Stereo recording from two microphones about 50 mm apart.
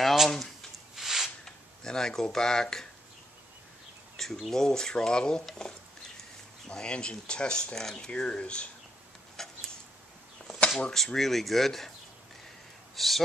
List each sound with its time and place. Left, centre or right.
0.0 s a sound: centre
1.4 s speech: centre
4.2 s speech: centre
8.1 s speech: left
9.4 s a sound: centre
11.1 s speech: centre
12.9 s a man's voice: centre